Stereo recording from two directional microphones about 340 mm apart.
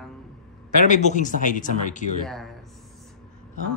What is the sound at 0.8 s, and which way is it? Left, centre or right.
Speech, left.